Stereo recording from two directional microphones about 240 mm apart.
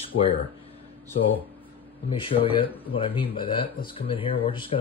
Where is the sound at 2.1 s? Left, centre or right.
Left.